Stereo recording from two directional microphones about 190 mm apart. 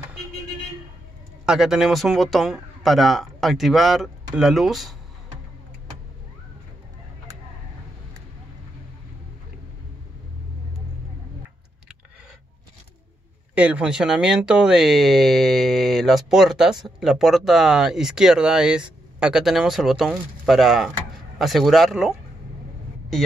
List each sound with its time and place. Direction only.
1.4 s speech: 5° right (ahead or behind)
13.6 s speech: 5° right (ahead or behind)